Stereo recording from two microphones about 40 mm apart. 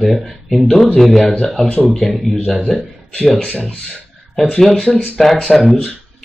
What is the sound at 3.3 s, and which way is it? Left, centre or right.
Speech, left.